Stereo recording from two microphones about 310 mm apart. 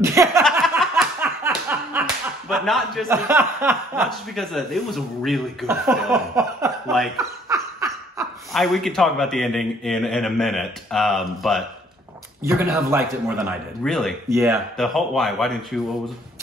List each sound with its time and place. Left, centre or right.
0.0 s speech: centre
0.4 s a sound: centre
8.5 s speech: centre